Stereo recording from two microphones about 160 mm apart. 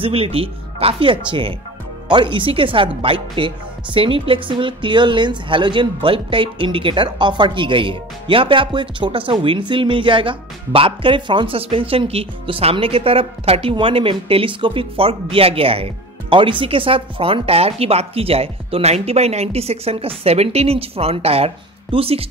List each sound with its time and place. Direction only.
0.0 s speech: 35° right (ahead or behind)